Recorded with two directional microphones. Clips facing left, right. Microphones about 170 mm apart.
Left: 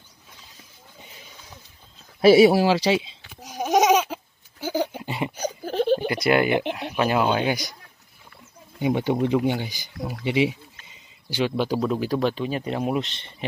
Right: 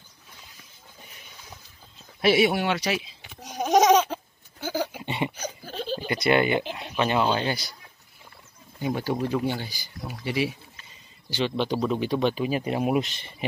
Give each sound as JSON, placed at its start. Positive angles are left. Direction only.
{"t": 2.2, "sound": "speech", "side_deg": 35}
{"t": 3.4, "sound": "baby laughter", "side_deg": 5}
{"t": 4.9, "sound": "a sound", "side_deg": 0}
{"t": 5.7, "sound": "baby laughter", "side_deg": 60}
{"t": 6.2, "sound": "speech", "side_deg": 5}
{"t": 6.5, "sound": "speech", "side_deg": 65}
{"t": 7.0, "sound": "speech", "side_deg": 5}
{"t": 8.7, "sound": "speech", "side_deg": 20}